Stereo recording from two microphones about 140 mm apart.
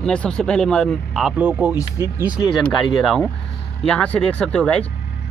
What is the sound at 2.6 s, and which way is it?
Speech, centre (ahead or behind).